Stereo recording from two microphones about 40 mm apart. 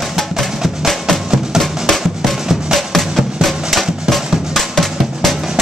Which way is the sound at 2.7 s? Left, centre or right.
Centre.